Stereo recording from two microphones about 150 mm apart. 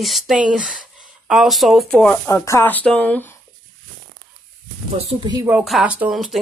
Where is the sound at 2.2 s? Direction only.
20° left (ahead or behind).